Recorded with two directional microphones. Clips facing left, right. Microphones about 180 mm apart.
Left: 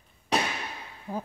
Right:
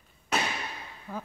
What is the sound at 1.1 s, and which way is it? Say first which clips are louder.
Insect: left 4 dB; 35° left (ahead or behind).